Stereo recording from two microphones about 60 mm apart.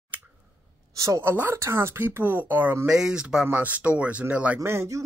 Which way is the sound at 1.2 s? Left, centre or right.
Right.